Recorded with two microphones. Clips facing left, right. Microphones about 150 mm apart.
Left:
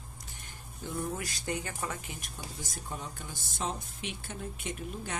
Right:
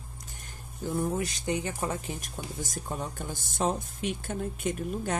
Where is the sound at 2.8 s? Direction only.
50° right (ahead or behind).